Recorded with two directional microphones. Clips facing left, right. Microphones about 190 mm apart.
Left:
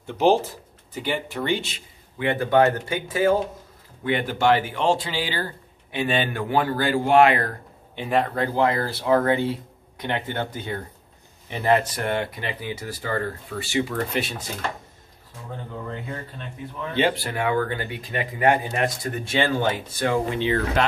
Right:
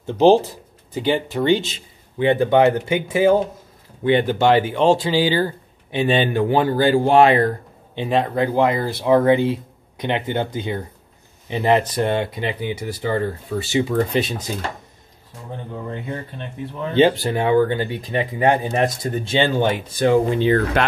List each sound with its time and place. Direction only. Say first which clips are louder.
0.0 s speech: right 6 dB; 30° right (ahead or behind)
15.9 s speech: right 4 dB; 25° right (ahead or behind)
20.3 s speech: right 6 dB; 45° right (ahead or behind)